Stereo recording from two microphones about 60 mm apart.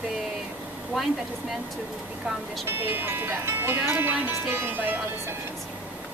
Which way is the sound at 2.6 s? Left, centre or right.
Right.